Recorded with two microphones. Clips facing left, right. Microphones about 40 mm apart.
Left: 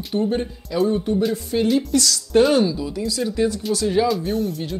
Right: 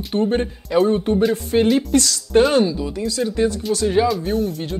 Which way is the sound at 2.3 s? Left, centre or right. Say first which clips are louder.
Right 1 dB; centre.